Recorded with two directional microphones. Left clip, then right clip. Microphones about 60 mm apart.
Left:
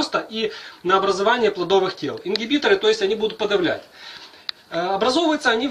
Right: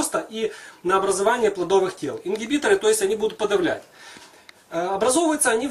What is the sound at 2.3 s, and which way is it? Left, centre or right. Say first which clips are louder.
Speech: left 2 dB; right.